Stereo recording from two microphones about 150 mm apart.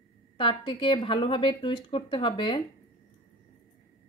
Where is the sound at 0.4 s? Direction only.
35° left (ahead or behind).